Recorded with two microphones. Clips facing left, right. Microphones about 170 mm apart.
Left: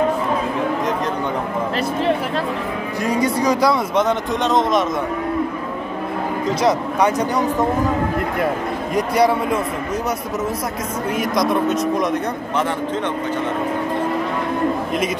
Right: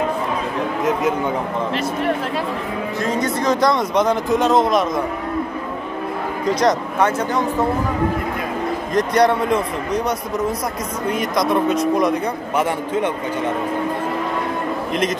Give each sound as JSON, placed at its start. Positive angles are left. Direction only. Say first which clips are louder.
{"t": 3.0, "sound": "speech", "louder": "left 3 dB", "side_deg": 10}
{"t": 3.9, "sound": "speech", "louder": "right 1 dB", "side_deg": 0}
{"t": 6.6, "sound": "speech", "louder": "left 1 dB", "side_deg": 15}
{"t": 8.9, "sound": "speech", "louder": "right 1 dB", "side_deg": 5}
{"t": 11.1, "sound": "speech", "louder": "even", "side_deg": 0}